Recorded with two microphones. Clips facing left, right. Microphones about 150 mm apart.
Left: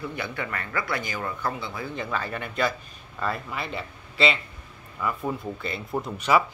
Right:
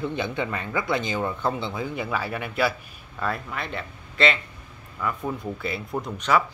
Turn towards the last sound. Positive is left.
turn(degrees=10)  # may be behind; listen again after turning